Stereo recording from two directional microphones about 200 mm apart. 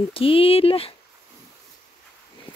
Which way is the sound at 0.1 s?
30° left (ahead or behind).